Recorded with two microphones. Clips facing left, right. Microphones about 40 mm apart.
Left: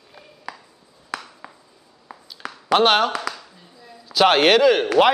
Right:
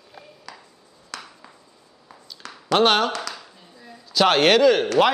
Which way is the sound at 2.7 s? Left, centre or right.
Centre.